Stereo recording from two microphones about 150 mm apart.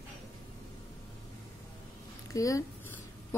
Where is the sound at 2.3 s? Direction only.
20° left (ahead or behind).